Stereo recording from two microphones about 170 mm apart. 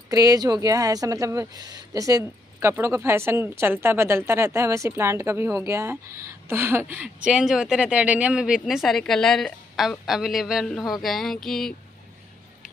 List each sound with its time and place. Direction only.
0.1 s a woman's voice: 20° right (ahead or behind); by 11.7 s centre (ahead or behind)